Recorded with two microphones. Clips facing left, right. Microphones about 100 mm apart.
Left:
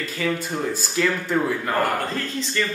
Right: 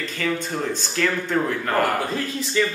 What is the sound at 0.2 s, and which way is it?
Speech, 5° left (ahead or behind).